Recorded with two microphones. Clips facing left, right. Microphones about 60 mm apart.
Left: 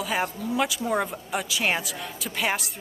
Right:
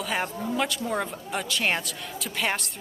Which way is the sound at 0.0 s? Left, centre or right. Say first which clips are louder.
Left 1 dB; centre.